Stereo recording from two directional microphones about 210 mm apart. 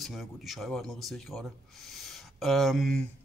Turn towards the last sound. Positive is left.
turn(degrees=0)  # may be behind; listen again after turning